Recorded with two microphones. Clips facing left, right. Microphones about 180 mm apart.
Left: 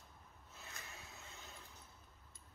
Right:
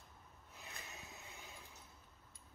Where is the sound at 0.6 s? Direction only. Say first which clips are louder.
Right 1 dB; 15° right (ahead or behind).